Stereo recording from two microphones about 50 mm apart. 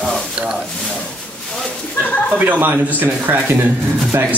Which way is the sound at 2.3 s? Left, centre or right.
Right.